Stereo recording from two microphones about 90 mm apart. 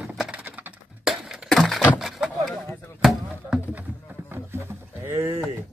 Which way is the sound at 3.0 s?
Centre (ahead or behind).